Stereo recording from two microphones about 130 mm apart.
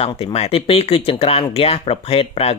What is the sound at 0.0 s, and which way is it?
Speech, 50° left (ahead or behind).